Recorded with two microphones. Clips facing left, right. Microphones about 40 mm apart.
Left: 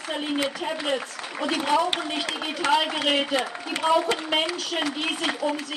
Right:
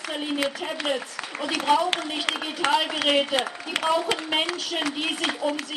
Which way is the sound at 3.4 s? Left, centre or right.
Right.